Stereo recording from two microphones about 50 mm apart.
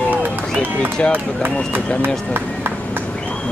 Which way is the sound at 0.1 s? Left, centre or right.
Right.